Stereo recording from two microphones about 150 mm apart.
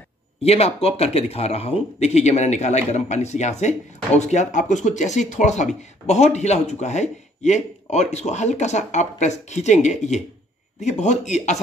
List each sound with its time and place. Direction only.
0.4 s speech: 45° left (ahead or behind)